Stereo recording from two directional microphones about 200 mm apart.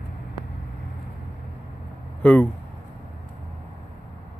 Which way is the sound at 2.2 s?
5° left (ahead or behind).